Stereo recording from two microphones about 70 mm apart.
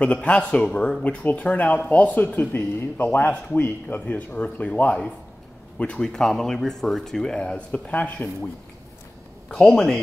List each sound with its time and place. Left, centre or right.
0.0 s speech: centre
9.5 s speech: centre